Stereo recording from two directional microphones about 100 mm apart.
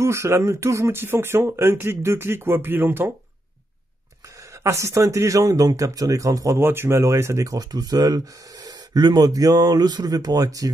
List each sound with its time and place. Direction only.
0.0 s speech: 30° right (ahead or behind)
4.6 s speech: 30° right (ahead or behind)
6.6 s speech: 25° right (ahead or behind)